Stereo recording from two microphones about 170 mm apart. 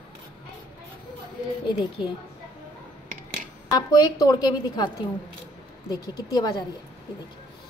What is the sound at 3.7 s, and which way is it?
A woman's voice, 25° left (ahead or behind).